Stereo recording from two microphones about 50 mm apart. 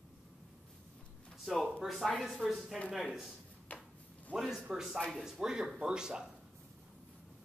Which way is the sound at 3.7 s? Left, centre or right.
Left.